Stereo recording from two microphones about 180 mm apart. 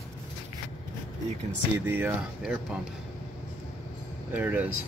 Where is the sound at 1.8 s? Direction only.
10° right (ahead or behind).